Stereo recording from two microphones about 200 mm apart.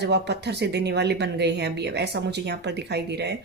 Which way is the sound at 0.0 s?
60° right (ahead or behind).